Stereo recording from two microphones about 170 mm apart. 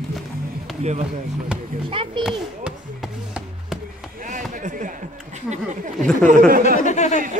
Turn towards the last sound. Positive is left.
turn(degrees=45)  # may be behind; listen again after turning